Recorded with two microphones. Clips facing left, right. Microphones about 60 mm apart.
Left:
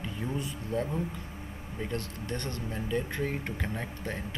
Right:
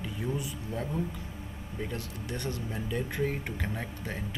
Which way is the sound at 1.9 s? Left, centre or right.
Centre.